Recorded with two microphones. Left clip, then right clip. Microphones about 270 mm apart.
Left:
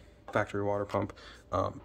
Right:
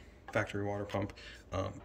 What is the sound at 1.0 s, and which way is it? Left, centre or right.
Speech, left.